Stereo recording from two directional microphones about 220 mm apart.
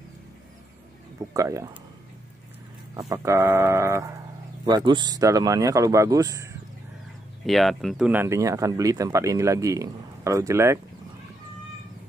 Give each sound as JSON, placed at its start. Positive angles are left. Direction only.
{"t": 1.3, "sound": "speech", "side_deg": -15}
{"t": 3.0, "sound": "speech", "side_deg": -15}
{"t": 7.4, "sound": "speech", "side_deg": 0}